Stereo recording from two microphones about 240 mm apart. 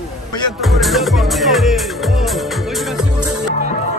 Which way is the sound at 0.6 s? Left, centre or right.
Centre.